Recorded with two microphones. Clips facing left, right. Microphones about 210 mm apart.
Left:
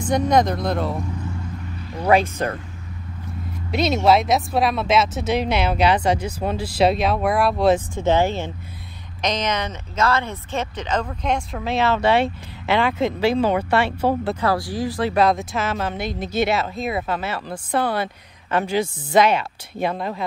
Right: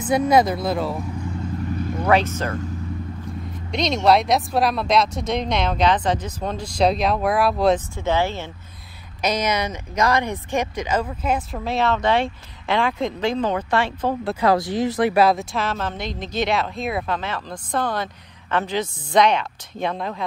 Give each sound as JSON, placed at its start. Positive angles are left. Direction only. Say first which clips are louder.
{"t": 0.0, "sound": "speech", "louder": "right 1 dB", "side_deg": -5}
{"t": 2.4, "sound": "speech", "louder": "left 2 dB", "side_deg": 15}
{"t": 3.7, "sound": "speech", "louder": "left 1 dB", "side_deg": 5}
{"t": 7.9, "sound": "speech", "louder": "left 3 dB", "side_deg": 15}
{"t": 9.2, "sound": "speech", "louder": "right 1 dB", "side_deg": -10}
{"t": 14.3, "sound": "speech", "louder": "right 3 dB", "side_deg": -20}
{"t": 15.1, "sound": "speech", "louder": "right 1 dB", "side_deg": 0}